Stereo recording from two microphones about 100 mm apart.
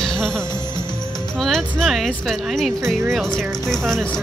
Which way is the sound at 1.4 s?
5° left (ahead or behind).